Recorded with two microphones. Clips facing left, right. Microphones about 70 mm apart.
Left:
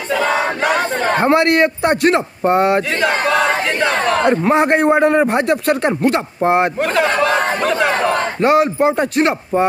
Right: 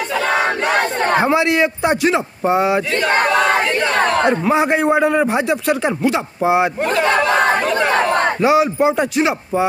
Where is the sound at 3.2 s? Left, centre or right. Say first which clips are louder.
Right 1 dB; centre.